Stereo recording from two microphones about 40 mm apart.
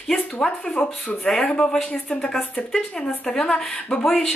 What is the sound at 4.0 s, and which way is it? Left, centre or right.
Speech, centre.